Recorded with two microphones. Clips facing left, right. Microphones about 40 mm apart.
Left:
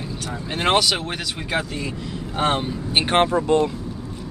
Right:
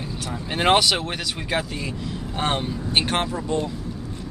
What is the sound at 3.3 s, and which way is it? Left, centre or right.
Speech, left.